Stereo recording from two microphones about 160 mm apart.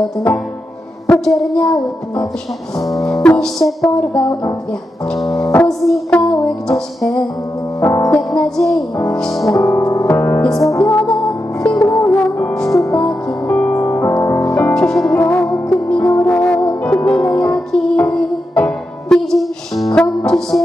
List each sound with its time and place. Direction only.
1.0 s speech: 5° left (ahead or behind)
3.2 s music: 5° left (ahead or behind)
4.2 s speech: 25° left (ahead or behind)
5.3 s music: 20° left (ahead or behind)
5.6 s music: 5° left (ahead or behind)
7.8 s music: 15° left (ahead or behind)
9.5 s music: 20° left (ahead or behind)
14.7 s music: 5° left (ahead or behind)
15.1 s music: 15° left (ahead or behind)